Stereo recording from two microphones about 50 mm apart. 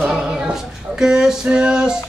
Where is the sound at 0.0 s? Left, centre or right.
Centre.